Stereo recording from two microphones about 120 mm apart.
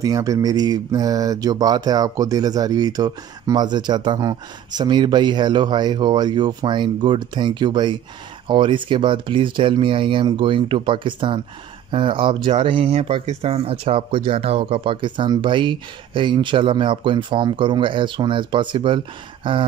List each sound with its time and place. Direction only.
0.0 s speech: 30° right (ahead or behind); by 19.6 s 45° right (ahead or behind)